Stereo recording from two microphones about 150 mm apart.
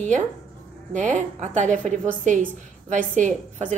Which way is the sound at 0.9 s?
55° right (ahead or behind).